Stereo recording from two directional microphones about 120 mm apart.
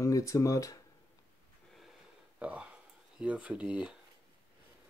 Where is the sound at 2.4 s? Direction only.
10° right (ahead or behind).